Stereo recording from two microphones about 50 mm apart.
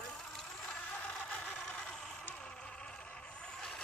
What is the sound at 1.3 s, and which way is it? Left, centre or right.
Vehicle, left.